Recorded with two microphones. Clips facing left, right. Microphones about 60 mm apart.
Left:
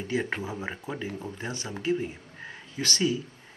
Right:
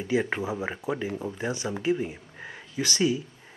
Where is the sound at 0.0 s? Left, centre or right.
Centre.